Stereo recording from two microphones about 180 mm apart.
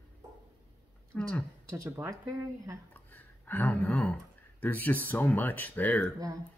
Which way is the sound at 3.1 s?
10° left (ahead or behind).